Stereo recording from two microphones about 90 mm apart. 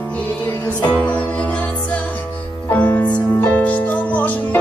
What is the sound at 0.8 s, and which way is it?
Music, 20° left (ahead or behind).